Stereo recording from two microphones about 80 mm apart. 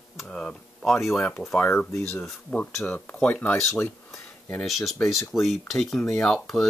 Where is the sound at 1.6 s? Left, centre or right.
Left.